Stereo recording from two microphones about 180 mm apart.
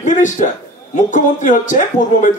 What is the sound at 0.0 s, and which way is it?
Speech, 45° left (ahead or behind).